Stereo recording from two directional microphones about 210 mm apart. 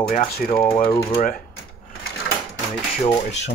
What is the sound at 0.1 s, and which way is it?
Speech, 25° left (ahead or behind).